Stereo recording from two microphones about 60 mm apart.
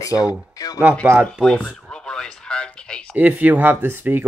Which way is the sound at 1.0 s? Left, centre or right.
Right.